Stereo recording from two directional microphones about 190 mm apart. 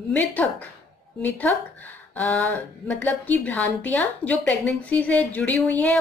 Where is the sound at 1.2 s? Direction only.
10° left (ahead or behind).